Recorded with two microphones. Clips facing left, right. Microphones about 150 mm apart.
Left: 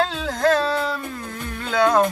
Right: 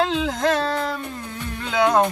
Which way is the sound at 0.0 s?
20° right (ahead or behind).